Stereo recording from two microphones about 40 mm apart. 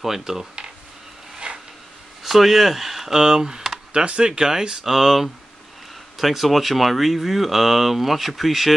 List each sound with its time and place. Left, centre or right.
0.2 s speech: centre
1.5 s a sound: right
2.2 s speech: centre
3.2 s speech: centre
4.3 s speech: centre
4.9 s speech: centre